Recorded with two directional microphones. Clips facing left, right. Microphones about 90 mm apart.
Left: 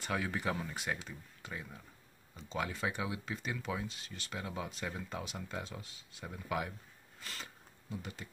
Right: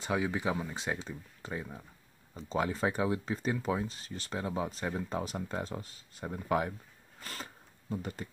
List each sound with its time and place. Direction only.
0.0 s speech: 20° right (ahead or behind)
0.7 s speech: 30° right (ahead or behind)
7.2 s a sound: 40° right (ahead or behind)
7.9 s speech: 45° right (ahead or behind)